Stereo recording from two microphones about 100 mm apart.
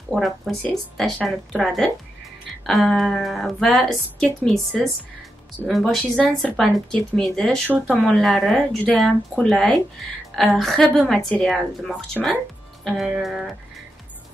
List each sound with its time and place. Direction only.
0.1 s speech: centre (ahead or behind)
5.7 s speech: centre (ahead or behind)
7.6 s speech: 15° right (ahead or behind)
8.0 s speech: centre (ahead or behind)